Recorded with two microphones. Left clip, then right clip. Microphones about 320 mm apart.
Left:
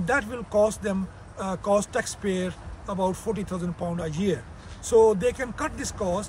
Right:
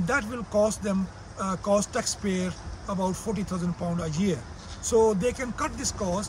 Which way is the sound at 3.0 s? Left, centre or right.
Centre.